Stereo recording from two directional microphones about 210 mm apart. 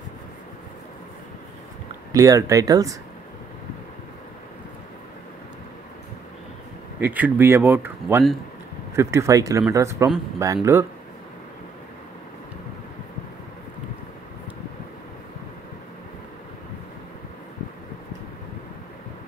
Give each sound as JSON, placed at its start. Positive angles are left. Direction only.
{"t": 2.1, "sound": "speech", "side_deg": -15}
{"t": 7.0, "sound": "speech", "side_deg": -10}